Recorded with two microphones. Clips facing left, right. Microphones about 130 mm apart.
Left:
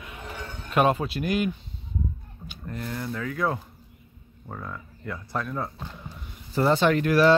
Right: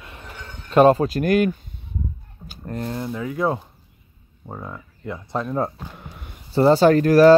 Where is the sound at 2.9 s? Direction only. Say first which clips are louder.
Right 2 dB; 20° right (ahead or behind).